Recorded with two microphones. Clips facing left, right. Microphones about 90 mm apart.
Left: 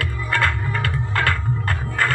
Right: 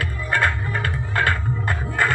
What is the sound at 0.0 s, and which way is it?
Music, 25° right (ahead or behind).